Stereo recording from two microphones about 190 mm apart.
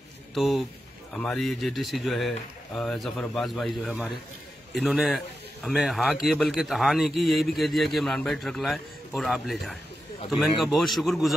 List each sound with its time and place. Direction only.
0.3 s a man's voice: centre (ahead or behind)